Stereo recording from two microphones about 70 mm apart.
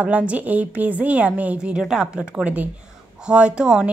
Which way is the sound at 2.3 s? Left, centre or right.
Right.